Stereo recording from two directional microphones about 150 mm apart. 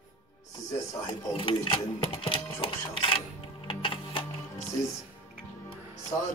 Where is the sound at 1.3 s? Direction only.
35° left (ahead or behind).